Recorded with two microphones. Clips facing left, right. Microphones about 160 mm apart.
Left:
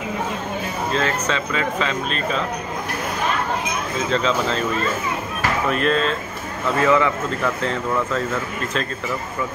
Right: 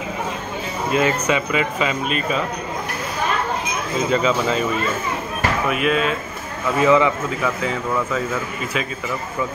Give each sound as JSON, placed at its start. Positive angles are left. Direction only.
{"t": 0.9, "sound": "speech", "side_deg": -10}
{"t": 4.1, "sound": "speech", "side_deg": -5}
{"t": 5.7, "sound": "speech", "side_deg": -10}
{"t": 7.4, "sound": "speech", "side_deg": -5}